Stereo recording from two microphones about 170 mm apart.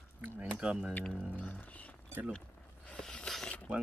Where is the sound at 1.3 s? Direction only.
10° left (ahead or behind).